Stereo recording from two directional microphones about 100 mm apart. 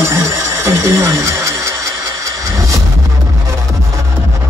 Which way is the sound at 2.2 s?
35° right (ahead or behind).